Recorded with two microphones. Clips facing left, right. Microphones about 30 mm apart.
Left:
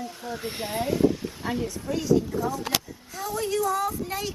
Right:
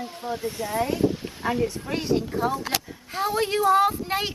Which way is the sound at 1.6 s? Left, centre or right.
Right.